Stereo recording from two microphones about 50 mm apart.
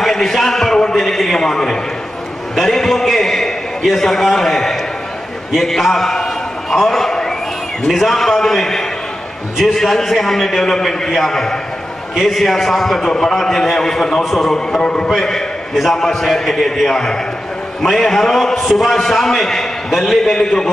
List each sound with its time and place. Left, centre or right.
0.0 s a sound: centre
2.6 s a man's voice: centre
14.8 s a man's voice: centre